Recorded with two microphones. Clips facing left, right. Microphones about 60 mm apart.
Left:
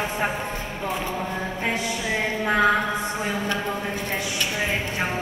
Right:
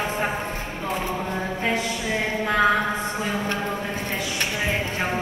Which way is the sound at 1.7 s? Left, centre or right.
Right.